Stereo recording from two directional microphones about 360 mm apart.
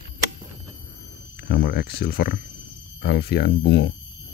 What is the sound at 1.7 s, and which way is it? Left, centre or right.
Speech, left.